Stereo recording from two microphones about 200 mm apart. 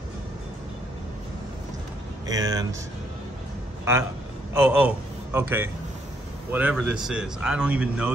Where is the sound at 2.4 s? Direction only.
20° right (ahead or behind).